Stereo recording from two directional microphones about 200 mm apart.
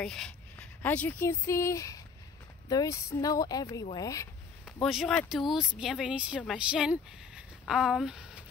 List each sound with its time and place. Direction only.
0.0 s speech: 5° left (ahead or behind)
4.8 s speech: centre (ahead or behind)